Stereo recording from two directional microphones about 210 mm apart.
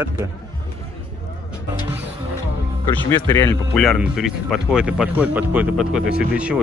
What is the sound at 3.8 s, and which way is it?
Speech, centre (ahead or behind).